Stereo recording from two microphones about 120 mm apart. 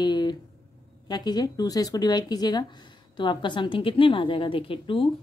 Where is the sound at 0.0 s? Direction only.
35° left (ahead or behind).